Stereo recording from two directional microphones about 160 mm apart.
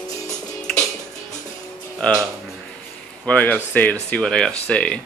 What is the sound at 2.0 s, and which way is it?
Speech, 5° left (ahead or behind).